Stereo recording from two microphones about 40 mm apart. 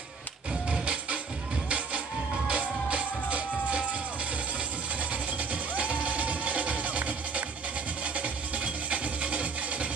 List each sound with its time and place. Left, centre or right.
0.7 s music: right
2.4 s music: right
5.1 s music: right